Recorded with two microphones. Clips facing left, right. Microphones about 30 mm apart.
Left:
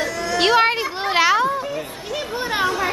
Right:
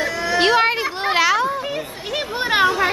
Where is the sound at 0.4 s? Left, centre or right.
Centre.